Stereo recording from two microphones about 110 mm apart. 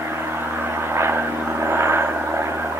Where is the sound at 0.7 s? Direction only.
20° right (ahead or behind).